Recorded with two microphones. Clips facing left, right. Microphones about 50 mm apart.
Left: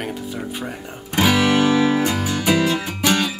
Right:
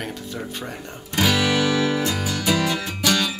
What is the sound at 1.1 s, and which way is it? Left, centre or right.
Music, left.